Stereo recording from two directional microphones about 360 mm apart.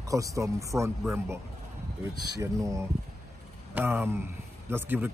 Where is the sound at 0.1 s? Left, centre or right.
Centre.